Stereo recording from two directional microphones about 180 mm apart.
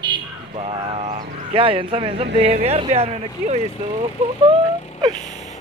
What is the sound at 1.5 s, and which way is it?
Speech, 30° right (ahead or behind).